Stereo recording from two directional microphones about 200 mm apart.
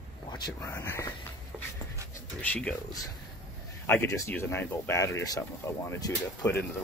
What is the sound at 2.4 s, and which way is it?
Speech, 5° left (ahead or behind).